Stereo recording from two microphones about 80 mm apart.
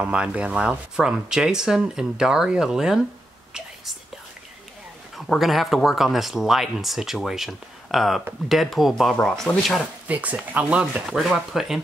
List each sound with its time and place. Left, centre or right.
0.0 s speech: centre
5.4 s speech: centre
10.0 s speech: centre